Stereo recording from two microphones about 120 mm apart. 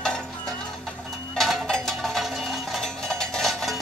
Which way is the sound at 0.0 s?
5° left (ahead or behind).